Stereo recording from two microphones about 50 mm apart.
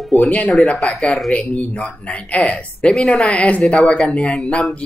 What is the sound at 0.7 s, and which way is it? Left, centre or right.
Speech, centre.